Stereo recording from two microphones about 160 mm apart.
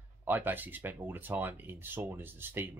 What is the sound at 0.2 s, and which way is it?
Speech, 10° right (ahead or behind).